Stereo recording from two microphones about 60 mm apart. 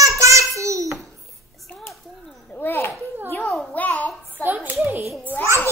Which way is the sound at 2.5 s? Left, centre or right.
Left.